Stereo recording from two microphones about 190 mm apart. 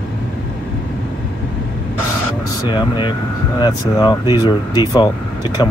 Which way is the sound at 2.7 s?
25° left (ahead or behind).